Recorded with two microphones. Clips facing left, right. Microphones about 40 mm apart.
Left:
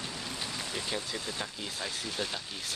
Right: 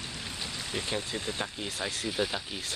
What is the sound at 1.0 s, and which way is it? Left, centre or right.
Speech, right.